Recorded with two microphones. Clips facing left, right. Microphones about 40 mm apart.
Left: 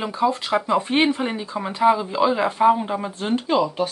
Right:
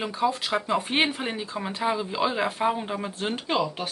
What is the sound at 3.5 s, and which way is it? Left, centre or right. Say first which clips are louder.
Speech: left 6 dB; centre.